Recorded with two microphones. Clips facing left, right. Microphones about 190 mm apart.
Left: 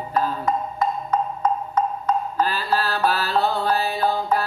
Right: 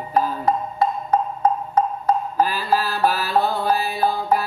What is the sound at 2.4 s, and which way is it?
Mantra, 10° right (ahead or behind).